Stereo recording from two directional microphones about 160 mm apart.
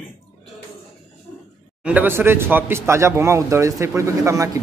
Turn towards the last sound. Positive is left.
turn(degrees=-20)  # may be behind; listen again after turning